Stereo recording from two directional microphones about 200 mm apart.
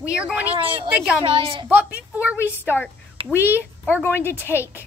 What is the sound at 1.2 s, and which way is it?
Speech, 25° right (ahead or behind).